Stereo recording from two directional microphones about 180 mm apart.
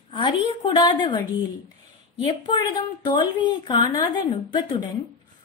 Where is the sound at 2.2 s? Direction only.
30° left (ahead or behind).